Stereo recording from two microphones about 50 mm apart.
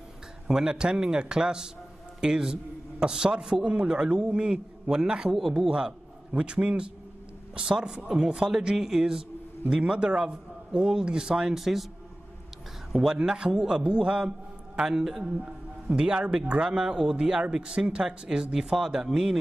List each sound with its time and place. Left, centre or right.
0.5 s a man's voice: centre
12.9 s speech: centre